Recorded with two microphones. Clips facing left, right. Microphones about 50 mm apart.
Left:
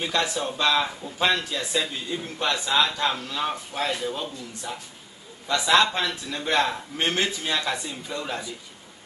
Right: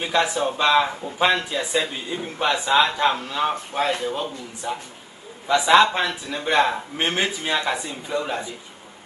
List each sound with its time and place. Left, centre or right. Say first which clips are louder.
0.0 s a man's voice: right 4 dB; centre